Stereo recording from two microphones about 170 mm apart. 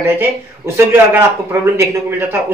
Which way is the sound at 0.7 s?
15° right (ahead or behind).